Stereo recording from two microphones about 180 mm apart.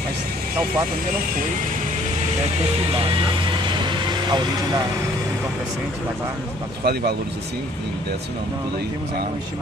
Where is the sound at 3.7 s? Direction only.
25° right (ahead or behind).